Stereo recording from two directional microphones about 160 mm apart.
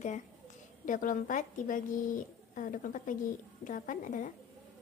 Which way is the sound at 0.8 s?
55° left (ahead or behind).